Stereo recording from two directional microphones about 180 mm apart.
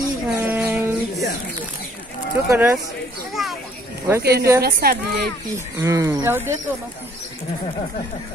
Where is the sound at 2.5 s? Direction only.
15° right (ahead or behind).